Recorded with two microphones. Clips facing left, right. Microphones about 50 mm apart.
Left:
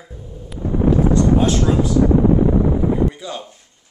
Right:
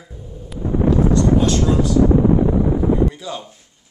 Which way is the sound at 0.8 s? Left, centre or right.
Centre.